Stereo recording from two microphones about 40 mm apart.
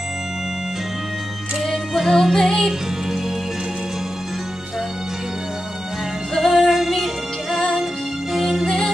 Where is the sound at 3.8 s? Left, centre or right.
Centre.